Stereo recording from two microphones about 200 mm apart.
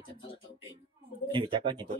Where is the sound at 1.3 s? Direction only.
25° right (ahead or behind).